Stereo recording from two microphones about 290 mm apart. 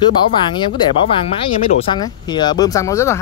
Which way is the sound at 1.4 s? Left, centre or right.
Centre.